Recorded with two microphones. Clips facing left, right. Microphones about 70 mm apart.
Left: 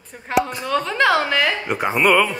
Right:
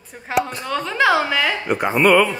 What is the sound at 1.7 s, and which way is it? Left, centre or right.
Speech, right.